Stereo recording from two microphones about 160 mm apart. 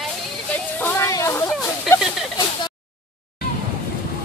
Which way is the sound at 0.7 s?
20° left (ahead or behind).